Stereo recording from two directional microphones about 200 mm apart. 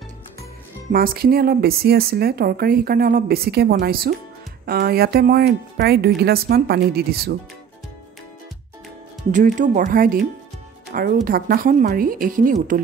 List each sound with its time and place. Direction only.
0.9 s speech: 50° right (ahead or behind)
9.3 s speech: 40° right (ahead or behind)